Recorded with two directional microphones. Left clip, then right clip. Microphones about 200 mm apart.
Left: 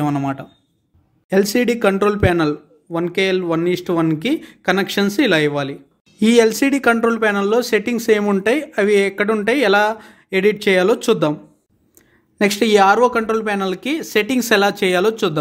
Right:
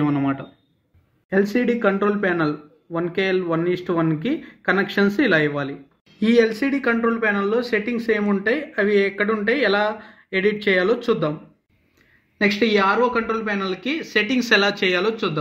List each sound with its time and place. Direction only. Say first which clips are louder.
0.0 s speech: left 1 dB; 45° left (ahead or behind); by 11.3 s 65° left (ahead or behind)
12.4 s speech: left 5 dB; 65° left (ahead or behind)